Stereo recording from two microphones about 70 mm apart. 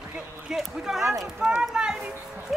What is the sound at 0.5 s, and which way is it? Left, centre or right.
Speech, centre.